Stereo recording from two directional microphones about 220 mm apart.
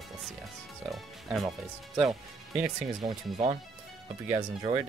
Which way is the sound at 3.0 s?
25° right (ahead or behind).